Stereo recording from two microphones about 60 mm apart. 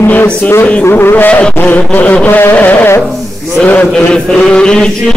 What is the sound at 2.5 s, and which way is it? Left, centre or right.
Speech, left.